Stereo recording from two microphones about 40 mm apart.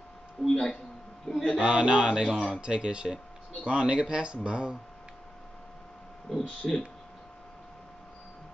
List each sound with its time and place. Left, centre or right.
0.5 s speech: centre
1.3 s a man's voice: centre
1.6 s speech: right
2.2 s speech: centre
2.6 s speech: right
6.6 s speech: centre